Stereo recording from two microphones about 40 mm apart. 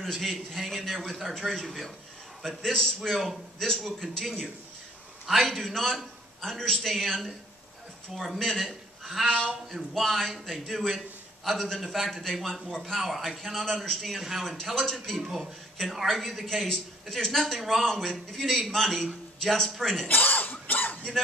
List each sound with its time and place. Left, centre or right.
0.0 s a man's voice: centre
2.4 s a man's voice: centre
3.5 s a man's voice: centre
3.8 s a man's voice: centre
5.4 s a man's voice: centre
9.3 s a man's voice: left
9.9 s a man's voice: centre
20.1 s throat clearing: left
20.6 s a sound: left